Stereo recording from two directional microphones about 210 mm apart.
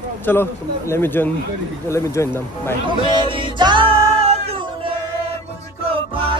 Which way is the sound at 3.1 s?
20° right (ahead or behind).